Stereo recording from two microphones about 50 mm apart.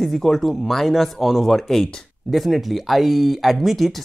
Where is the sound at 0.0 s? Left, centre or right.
Centre.